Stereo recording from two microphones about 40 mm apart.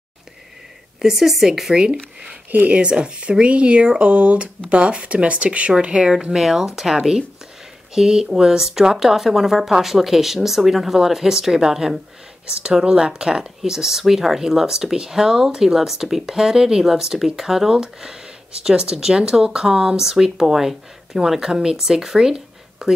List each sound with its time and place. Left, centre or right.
1.0 s speech: centre
2.7 s speech: right
6.3 s speech: centre